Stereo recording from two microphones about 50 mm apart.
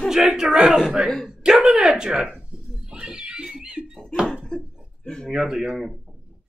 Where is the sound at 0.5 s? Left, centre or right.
Centre.